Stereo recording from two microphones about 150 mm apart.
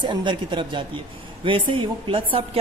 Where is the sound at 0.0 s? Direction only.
30° right (ahead or behind).